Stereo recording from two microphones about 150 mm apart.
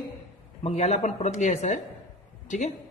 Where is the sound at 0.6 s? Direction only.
45° left (ahead or behind).